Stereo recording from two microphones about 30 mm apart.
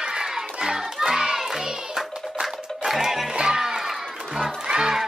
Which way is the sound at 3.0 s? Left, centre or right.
Centre.